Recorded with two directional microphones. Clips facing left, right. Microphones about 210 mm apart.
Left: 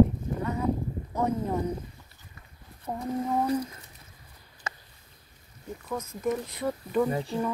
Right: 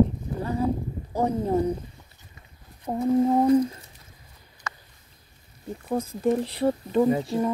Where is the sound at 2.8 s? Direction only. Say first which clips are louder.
Right 9 dB; 30° right (ahead or behind).